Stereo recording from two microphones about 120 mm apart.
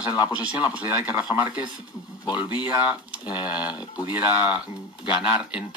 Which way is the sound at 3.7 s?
35° left (ahead or behind).